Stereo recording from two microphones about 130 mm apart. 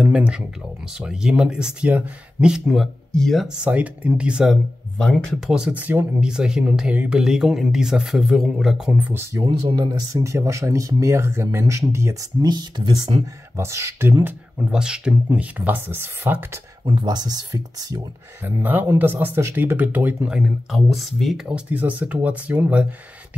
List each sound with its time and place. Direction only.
0.0 s speech: 10° right (ahead or behind)
3.6 s speech: 10° right (ahead or behind)
4.9 s speech: 5° left (ahead or behind); by 9.4 s 15° right (ahead or behind)
9.5 s speech: 35° right (ahead or behind)
13.6 s speech: 20° right (ahead or behind)
16.8 s speech: 35° right (ahead or behind)
18.4 s speech: 15° right (ahead or behind)